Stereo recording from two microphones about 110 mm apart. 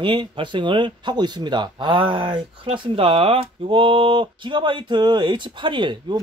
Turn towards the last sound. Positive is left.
turn(degrees=-45)  # may be behind; listen again after turning